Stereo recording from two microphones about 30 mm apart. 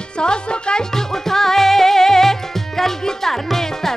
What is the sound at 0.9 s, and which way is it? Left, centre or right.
Music, centre.